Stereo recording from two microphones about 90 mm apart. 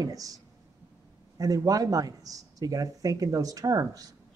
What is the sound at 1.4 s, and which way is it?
A woman's voice, 40° right (ahead or behind).